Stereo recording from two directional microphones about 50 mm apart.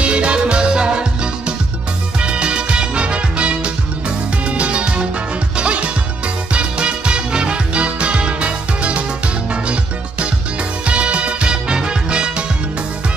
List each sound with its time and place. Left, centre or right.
0.0 s music: right
10.9 s music: right